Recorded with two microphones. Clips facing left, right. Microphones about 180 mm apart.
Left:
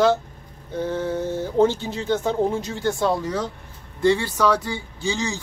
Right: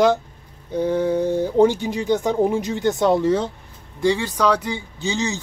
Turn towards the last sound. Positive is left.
turn(degrees=-20)  # may be behind; listen again after turning